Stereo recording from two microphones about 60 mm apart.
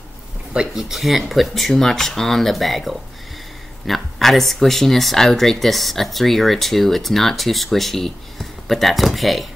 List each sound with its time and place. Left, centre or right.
0.5 s speech: centre